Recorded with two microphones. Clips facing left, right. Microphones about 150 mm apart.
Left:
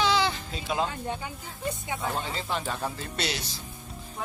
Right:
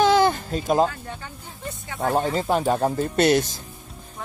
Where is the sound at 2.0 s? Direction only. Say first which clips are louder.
Right 9 dB; 55° right (ahead or behind).